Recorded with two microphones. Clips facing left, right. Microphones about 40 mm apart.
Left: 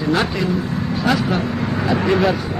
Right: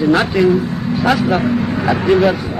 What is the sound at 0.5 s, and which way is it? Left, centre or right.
Vehicle, centre.